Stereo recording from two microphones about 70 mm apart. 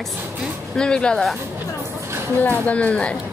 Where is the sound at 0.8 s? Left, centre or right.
Centre.